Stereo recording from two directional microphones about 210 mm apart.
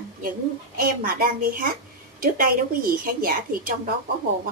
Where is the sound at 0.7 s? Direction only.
45° right (ahead or behind).